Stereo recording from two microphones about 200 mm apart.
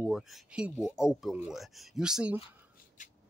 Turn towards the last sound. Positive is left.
turn(degrees=40)  # may be behind; listen again after turning